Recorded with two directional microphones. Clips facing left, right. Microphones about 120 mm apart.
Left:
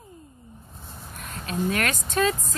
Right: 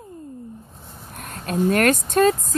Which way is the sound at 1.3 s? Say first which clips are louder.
Right 6 dB; 45° right (ahead or behind).